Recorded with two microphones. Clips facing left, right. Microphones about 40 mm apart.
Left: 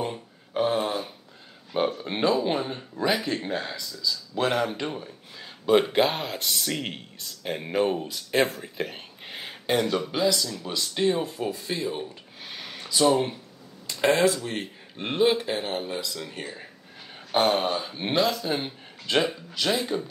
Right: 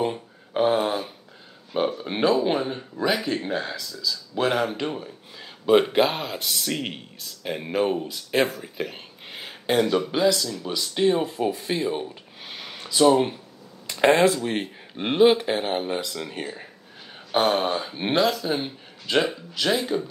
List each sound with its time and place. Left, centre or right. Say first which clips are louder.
0.1 s a sound: right 3 dB; centre
1.7 s a sound: right 1 dB; centre
2.0 s speech: right 5 dB; centre
8.6 s speech: right 1 dB; centre
11.1 s speech: right 4 dB; right
12.4 s a sound: right 1 dB; centre
13.8 s speech: right 3 dB; right
17.3 s speech: right 1 dB; centre
18.6 s speech: right 2 dB; centre